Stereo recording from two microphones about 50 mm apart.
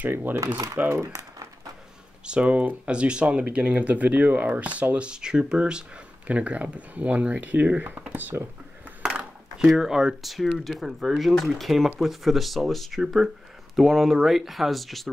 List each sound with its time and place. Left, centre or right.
0.0 s speech: right
0.8 s speech: right
2.2 s speech: right
9.0 s a sound: centre
9.8 s speech: centre